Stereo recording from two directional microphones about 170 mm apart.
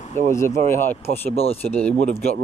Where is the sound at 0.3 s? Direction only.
15° left (ahead or behind).